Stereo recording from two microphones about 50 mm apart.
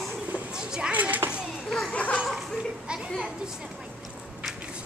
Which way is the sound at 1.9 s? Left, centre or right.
Left.